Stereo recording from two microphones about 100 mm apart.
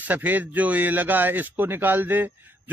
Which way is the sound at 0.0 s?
15° right (ahead or behind).